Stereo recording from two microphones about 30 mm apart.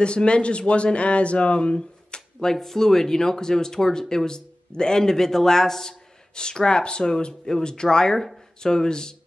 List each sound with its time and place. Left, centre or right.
0.0 s a man's voice: left
2.5 s speech: centre
6.3 s speech: left